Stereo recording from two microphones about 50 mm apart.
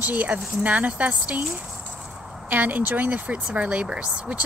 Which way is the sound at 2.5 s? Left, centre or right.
Right.